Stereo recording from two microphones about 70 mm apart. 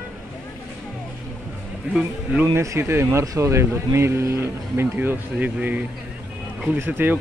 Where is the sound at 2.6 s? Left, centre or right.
Right.